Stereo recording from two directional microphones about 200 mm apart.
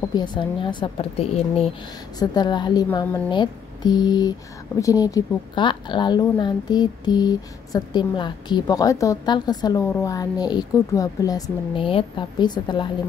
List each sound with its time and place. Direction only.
0.1 s a woman's voice: 20° left (ahead or behind)